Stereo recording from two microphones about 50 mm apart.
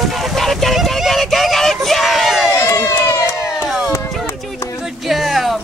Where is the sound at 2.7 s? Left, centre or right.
Left.